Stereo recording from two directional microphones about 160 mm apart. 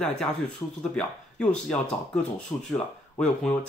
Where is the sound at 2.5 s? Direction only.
25° left (ahead or behind).